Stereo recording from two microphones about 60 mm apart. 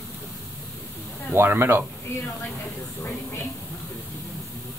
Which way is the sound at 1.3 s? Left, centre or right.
Right.